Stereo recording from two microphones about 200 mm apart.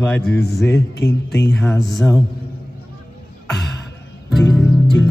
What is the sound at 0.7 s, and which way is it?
Speech, 60° left (ahead or behind).